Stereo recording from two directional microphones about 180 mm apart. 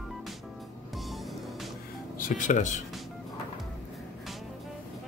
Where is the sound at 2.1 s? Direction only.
45° left (ahead or behind).